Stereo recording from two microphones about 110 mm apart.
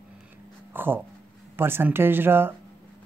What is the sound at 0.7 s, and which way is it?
Speech, 20° right (ahead or behind).